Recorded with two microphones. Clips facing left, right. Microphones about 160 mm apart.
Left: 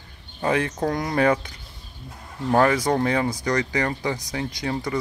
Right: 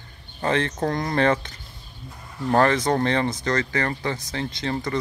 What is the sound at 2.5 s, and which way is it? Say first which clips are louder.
Speech: even; 10° left (ahead or behind).